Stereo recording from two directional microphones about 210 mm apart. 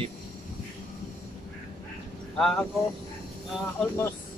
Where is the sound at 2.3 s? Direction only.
Centre (ahead or behind).